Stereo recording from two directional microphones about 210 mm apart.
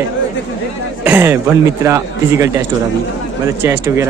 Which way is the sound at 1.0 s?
10° right (ahead or behind).